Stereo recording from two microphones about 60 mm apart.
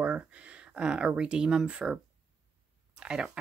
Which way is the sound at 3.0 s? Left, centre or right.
Centre.